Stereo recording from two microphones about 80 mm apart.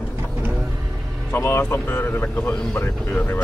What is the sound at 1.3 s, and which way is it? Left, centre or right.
Speech, left.